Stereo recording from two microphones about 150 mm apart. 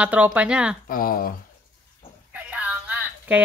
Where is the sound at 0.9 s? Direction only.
70° left (ahead or behind).